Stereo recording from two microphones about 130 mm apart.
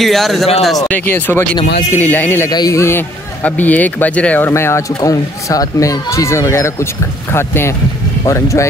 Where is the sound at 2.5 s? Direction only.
25° left (ahead or behind).